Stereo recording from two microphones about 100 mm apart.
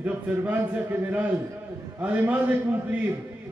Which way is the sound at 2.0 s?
15° right (ahead or behind).